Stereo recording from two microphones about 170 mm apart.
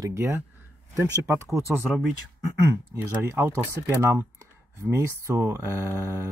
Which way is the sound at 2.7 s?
15° right (ahead or behind).